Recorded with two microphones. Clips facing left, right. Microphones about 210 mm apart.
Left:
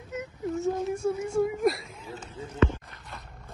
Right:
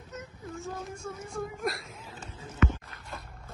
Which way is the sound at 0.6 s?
25° left (ahead or behind).